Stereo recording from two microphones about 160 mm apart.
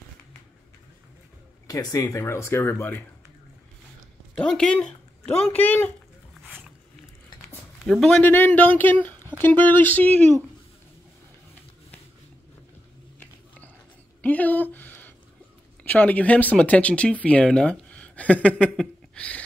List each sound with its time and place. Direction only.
1.7 s speech: 20° left (ahead or behind)
4.4 s speech: 5° left (ahead or behind)
7.8 s speech: centre (ahead or behind)
8.2 s speech: 15° left (ahead or behind)
14.2 s a sound: 10° left (ahead or behind)
15.8 s speech: 10° left (ahead or behind)